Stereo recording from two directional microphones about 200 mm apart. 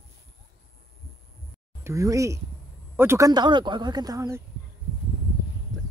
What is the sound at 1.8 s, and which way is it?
Speech, 15° right (ahead or behind).